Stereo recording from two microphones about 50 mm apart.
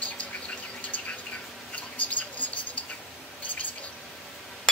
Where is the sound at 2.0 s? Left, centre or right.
Left.